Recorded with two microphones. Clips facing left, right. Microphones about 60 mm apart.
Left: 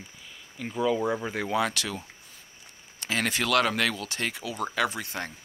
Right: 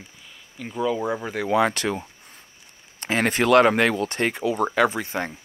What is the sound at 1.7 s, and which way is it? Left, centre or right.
Speech, right.